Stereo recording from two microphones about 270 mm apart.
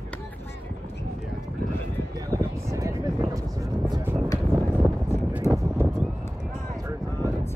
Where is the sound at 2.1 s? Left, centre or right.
Centre.